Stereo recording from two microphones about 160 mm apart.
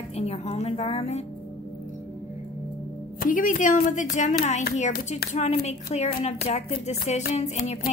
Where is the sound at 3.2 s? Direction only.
60° left (ahead or behind).